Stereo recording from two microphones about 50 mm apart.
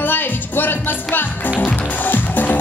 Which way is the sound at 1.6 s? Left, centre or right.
Left.